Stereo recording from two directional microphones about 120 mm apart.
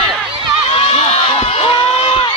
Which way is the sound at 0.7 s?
55° left (ahead or behind).